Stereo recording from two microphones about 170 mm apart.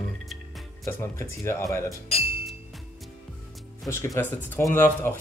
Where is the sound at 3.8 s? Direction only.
15° left (ahead or behind).